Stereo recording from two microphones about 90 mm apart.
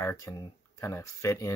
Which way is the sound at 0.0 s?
35° left (ahead or behind).